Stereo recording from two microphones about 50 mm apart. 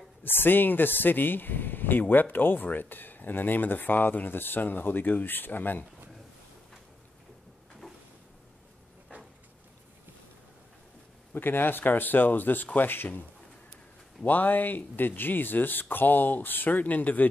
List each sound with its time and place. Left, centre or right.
0.2 s speech: left
11.3 s speech: left
14.2 s speech: left